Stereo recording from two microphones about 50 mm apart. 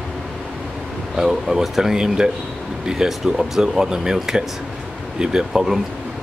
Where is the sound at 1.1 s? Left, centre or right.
Centre.